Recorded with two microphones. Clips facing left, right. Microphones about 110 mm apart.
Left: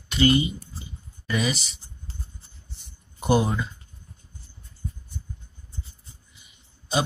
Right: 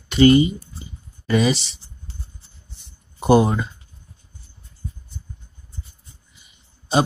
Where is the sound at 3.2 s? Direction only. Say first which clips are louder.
Right 6 dB; 50° right (ahead or behind).